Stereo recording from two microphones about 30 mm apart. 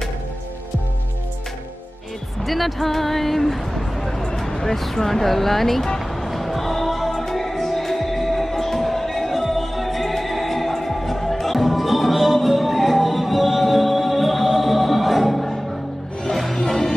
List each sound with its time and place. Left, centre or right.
2.4 s speech: centre
4.4 s vehicle: centre
4.7 s speech: centre
5.9 s music: centre
16.6 s music: centre